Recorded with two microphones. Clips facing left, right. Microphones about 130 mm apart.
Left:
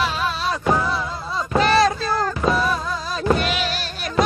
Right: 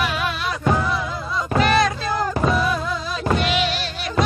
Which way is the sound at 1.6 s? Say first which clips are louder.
Left 2 dB; 30° left (ahead or behind).